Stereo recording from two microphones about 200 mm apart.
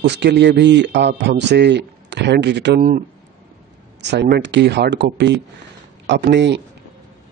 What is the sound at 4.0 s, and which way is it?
Speech, 60° right (ahead or behind).